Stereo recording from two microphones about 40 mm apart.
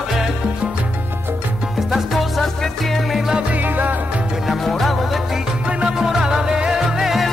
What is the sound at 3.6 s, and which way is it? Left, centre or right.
Music, right.